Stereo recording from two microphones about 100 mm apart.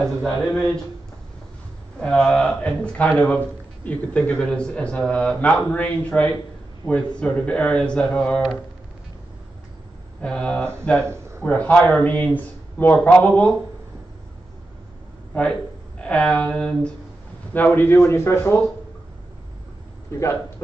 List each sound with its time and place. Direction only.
0.0 s speech: 5° left (ahead or behind)
2.0 s speech: 5° left (ahead or behind)
10.2 s speech: 10° left (ahead or behind)
15.3 s a man's voice: 15° left (ahead or behind)
20.1 s a man's voice: 30° left (ahead or behind)